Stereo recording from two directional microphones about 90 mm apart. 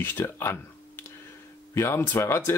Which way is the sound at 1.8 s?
30° left (ahead or behind).